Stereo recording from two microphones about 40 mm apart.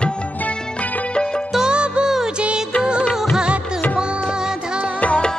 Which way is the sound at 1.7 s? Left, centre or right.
Right.